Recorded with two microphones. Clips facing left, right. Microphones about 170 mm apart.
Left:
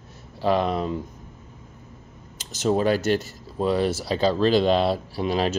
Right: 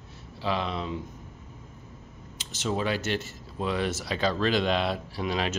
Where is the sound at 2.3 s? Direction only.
40° left (ahead or behind).